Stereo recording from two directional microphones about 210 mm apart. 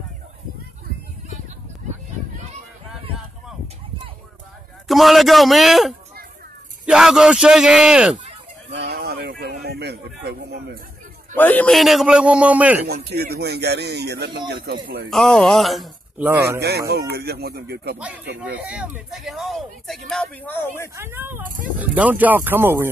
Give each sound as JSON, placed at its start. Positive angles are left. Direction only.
{"t": 4.8, "sound": "speech", "side_deg": 0}
{"t": 8.7, "sound": "a sound", "side_deg": -50}
{"t": 11.3, "sound": "speech", "side_deg": 10}
{"t": 12.8, "sound": "speech", "side_deg": -50}
{"t": 15.0, "sound": "speech", "side_deg": 0}
{"t": 16.5, "sound": "speech", "side_deg": -50}
{"t": 17.9, "sound": "speech", "side_deg": -5}
{"t": 20.9, "sound": "speech", "side_deg": -10}